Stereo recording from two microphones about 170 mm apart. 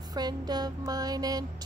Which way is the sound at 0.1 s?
25° right (ahead or behind).